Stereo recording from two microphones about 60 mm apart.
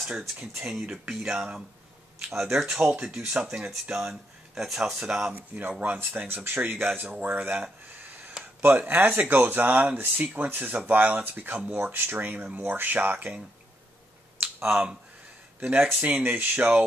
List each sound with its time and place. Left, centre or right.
0.6 s speech: centre
3.0 s speech: centre
5.3 s speech: right
7.6 s a sound: right
8.5 s speech: right
14.4 s a sound: right
15.6 s speech: right